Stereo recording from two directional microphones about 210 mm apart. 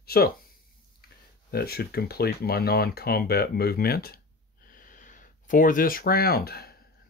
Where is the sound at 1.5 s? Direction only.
50° left (ahead or behind).